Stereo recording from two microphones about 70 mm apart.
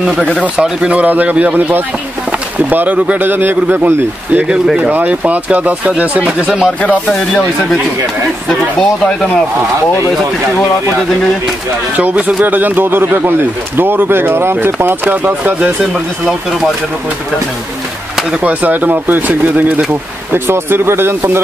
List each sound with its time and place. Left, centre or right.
0.0 s speech: centre
4.6 s speech: centre
4.9 s speech: right
6.8 s speech: centre
12.0 s speech: right
18.4 s speech: right